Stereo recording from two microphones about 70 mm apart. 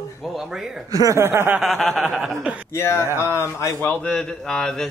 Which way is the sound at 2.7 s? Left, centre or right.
Left.